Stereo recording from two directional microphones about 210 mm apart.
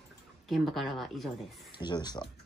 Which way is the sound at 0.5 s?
Centre (ahead or behind).